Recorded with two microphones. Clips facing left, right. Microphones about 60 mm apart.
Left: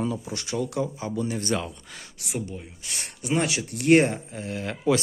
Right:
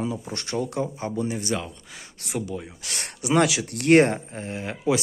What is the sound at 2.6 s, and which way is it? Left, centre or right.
Speech, right.